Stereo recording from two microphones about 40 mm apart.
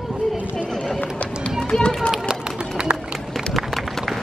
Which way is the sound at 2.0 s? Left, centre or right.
Centre.